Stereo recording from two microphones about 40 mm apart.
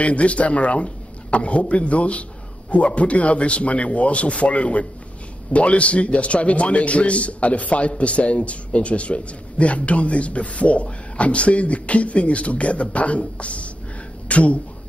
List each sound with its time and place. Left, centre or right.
0.0 s a man's voice: left